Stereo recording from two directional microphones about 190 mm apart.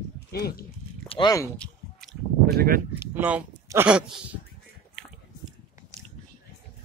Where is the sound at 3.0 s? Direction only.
10° right (ahead or behind).